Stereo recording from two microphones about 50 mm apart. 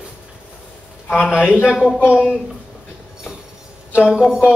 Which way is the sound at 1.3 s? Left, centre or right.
Centre.